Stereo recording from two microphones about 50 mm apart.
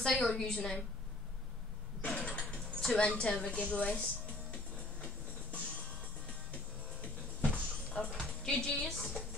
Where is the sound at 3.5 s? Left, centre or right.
Left.